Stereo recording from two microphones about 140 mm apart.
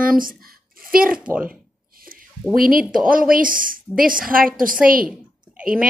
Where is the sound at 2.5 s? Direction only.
90° right.